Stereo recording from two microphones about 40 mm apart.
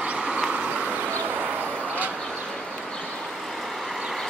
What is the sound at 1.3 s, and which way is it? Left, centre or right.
Vehicle, right.